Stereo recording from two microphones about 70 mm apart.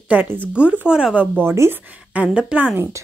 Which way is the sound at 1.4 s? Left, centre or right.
Right.